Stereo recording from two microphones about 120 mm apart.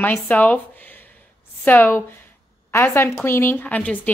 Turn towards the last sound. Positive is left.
turn(degrees=10)  # may be behind; listen again after turning